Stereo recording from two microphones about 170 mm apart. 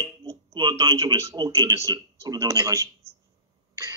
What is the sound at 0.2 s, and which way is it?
A man's voice, 25° right (ahead or behind).